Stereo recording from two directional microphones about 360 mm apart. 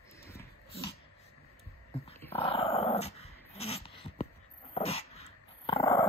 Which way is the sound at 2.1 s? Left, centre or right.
Centre.